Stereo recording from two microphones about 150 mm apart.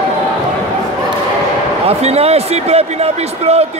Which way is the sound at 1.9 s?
45° right (ahead or behind).